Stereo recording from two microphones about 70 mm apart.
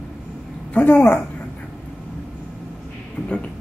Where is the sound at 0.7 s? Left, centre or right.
Left.